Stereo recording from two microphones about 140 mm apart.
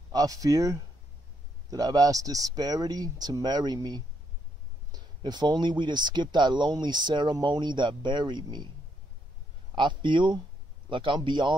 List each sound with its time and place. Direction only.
0.1 s speech: 25° right (ahead or behind)
9.8 s speech: 35° right (ahead or behind)